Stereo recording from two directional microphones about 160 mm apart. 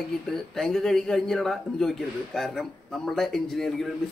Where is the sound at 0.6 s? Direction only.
5° left (ahead or behind).